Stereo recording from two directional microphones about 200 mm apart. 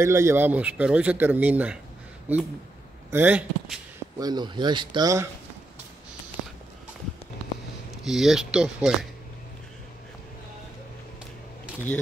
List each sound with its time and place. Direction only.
0.0 s speech: 15° right (ahead or behind)
4.2 s speech: 20° right (ahead or behind)
8.0 s speech: centre (ahead or behind)